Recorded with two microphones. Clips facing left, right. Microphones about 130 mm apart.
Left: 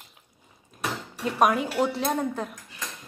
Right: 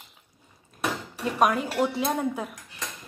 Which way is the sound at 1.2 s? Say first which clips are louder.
Left 1 dB; centre (ahead or behind).